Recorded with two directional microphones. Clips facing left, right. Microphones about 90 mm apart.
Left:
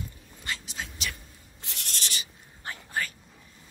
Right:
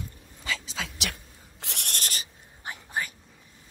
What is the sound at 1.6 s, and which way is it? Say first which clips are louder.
Owl: right 3 dB; 70° right (ahead or behind).